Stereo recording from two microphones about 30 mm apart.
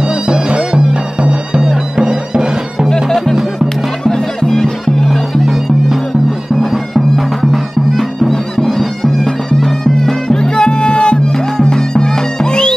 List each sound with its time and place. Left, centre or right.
0.0 s music: right
3.6 s music: left
5.4 s music: centre
8.3 s music: centre
10.3 s music: left